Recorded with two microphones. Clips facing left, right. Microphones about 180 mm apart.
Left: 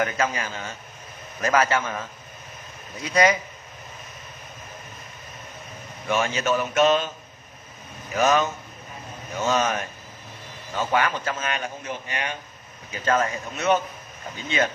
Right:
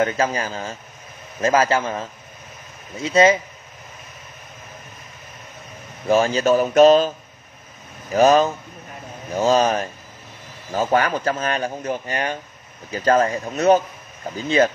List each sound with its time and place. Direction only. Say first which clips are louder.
0.0 s a man's voice: right 4 dB; 30° right (ahead or behind)
6.0 s speech: right 7 dB; 35° right (ahead or behind)
8.1 s speech: right 6 dB; 35° right (ahead or behind)